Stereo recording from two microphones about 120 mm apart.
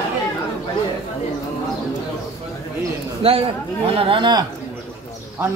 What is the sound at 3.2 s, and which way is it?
Speech, 55° right (ahead or behind).